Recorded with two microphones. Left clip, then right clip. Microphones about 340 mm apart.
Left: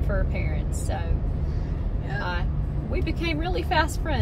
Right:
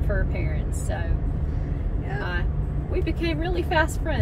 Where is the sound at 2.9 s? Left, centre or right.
Centre.